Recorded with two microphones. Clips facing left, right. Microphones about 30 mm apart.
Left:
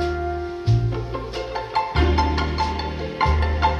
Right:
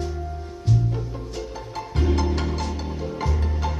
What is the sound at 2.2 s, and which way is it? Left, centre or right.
Music, left.